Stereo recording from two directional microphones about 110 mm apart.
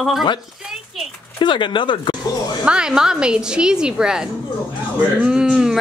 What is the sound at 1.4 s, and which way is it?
Speech, 45° left (ahead or behind).